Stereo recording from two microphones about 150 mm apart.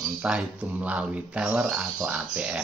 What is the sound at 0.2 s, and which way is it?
Speech, 5° right (ahead or behind).